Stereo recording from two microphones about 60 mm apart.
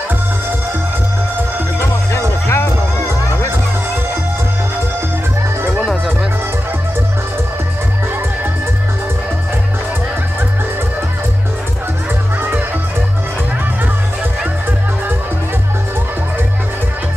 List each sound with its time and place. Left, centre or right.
1.8 s music: left
5.8 s music: centre
12.4 s music: right